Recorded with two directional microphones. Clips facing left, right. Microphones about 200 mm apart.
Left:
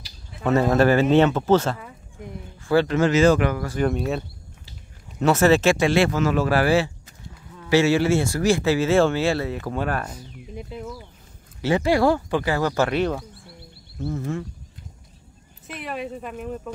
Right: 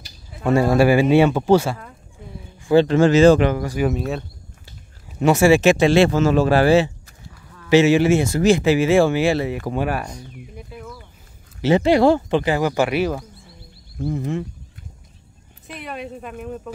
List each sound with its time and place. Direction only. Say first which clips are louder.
0.5 s speech: right 2 dB; 10° right (ahead or behind)
2.6 s speech: right 5 dB; 20° right (ahead or behind)
3.7 s speech: right 1 dB; 5° right (ahead or behind)
5.2 s speech: right 3 dB; 15° right (ahead or behind)
5.9 s speech: right 5 dB; 30° right (ahead or behind); by 10.0 s 10° right (ahead or behind)
10.5 s a sound: left 6 dB; 25° left (ahead or behind)
11.6 s speech: right 4 dB; 20° right (ahead or behind)
15.6 s speech: left 1 dB; centre (ahead or behind)